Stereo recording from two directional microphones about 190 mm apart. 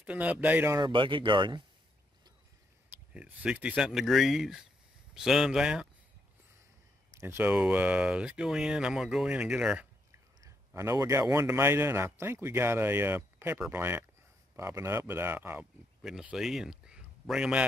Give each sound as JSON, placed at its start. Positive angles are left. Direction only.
{"t": 0.0, "sound": "a man's voice", "side_deg": -5}
{"t": 0.7, "sound": "speech", "side_deg": -25}
{"t": 3.1, "sound": "speech", "side_deg": -5}
{"t": 7.2, "sound": "a man's voice", "side_deg": -10}